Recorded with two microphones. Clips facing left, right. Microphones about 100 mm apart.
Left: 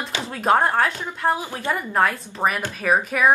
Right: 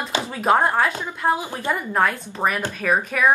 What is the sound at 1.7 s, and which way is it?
Speech, centre (ahead or behind).